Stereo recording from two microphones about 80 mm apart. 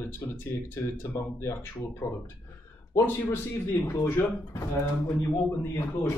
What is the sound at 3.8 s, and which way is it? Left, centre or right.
Speech, left.